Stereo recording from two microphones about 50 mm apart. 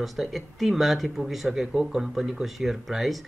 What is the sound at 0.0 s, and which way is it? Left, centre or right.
Speech, centre.